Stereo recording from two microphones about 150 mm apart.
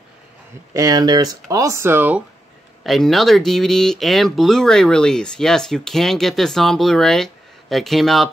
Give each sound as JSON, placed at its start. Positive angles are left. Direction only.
{"t": 0.7, "sound": "speech", "side_deg": -25}
{"t": 2.8, "sound": "speech", "side_deg": 0}